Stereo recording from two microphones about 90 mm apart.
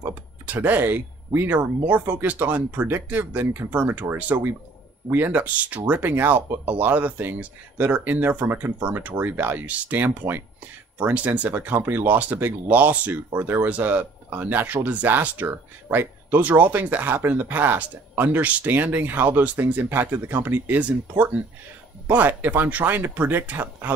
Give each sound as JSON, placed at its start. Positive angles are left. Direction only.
{"t": 0.5, "sound": "speech", "side_deg": -20}
{"t": 22.1, "sound": "speech", "side_deg": -20}